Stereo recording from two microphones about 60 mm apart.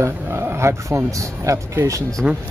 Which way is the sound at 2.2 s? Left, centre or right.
Centre.